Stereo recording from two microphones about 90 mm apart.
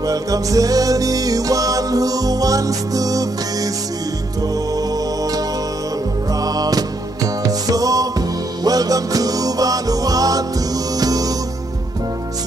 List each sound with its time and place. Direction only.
0.0 s music: 40° right (ahead or behind)
6.4 s music: 45° right (ahead or behind)